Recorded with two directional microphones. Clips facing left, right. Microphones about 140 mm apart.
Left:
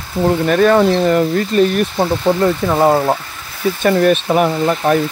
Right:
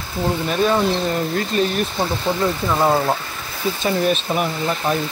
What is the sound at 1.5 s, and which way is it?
Speech, 45° left (ahead or behind).